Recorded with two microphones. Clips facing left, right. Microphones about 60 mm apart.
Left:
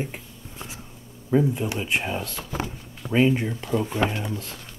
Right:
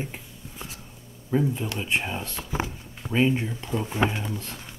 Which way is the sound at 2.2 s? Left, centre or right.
Centre.